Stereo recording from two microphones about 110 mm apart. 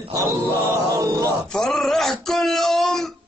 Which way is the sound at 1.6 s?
5° left (ahead or behind).